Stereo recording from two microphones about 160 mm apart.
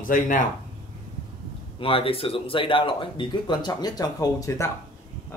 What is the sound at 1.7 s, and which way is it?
Speech, 35° left (ahead or behind).